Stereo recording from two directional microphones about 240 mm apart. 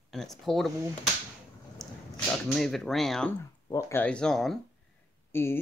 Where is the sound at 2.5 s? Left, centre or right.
Centre.